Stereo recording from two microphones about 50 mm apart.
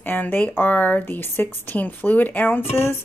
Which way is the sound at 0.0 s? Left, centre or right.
Left.